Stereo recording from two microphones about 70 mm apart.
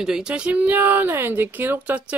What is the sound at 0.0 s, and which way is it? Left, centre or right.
Speech, centre.